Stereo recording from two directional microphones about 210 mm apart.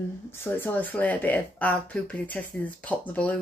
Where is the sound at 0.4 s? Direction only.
10° left (ahead or behind).